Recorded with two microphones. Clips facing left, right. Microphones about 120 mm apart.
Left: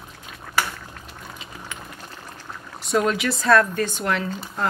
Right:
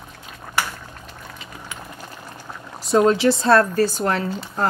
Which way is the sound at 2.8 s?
30° right (ahead or behind).